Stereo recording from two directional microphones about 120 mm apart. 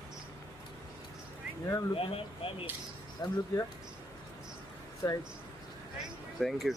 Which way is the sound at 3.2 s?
35° left (ahead or behind).